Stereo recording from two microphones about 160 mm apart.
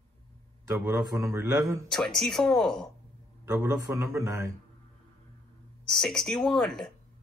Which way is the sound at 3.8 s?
15° right (ahead or behind).